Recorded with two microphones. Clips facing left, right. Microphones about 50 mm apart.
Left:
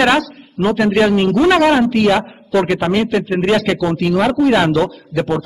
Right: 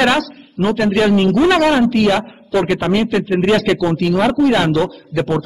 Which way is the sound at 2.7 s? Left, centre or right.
Centre.